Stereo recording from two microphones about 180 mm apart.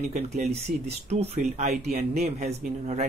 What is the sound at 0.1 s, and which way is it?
Speech, 35° right (ahead or behind).